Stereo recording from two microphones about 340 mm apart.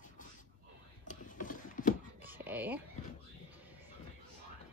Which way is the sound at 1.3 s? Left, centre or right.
Left.